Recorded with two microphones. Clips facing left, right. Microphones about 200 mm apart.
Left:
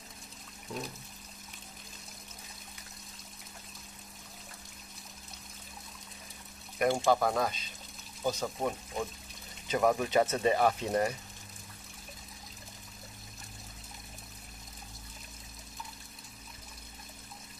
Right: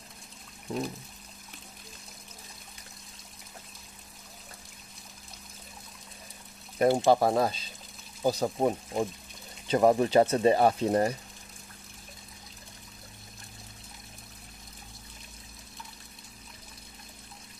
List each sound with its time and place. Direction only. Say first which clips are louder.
6.8 s speech: right 5 dB; 30° right (ahead or behind)